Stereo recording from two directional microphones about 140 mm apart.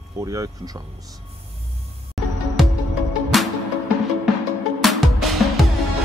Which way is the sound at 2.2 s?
Centre (ahead or behind).